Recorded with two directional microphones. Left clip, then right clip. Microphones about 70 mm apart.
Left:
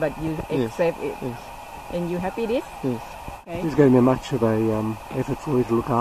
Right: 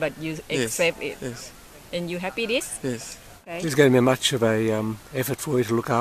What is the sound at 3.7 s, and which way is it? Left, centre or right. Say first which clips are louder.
Speech: left 1 dB; right.